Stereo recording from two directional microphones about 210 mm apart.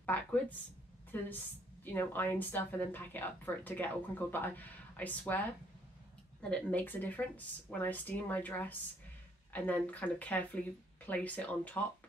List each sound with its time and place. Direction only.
0.0 s speech: 5° left (ahead or behind)
6.5 s speech: 10° left (ahead or behind)